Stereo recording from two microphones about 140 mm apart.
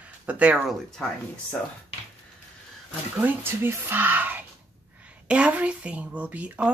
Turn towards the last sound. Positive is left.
turn(degrees=-10)  # may be behind; listen again after turning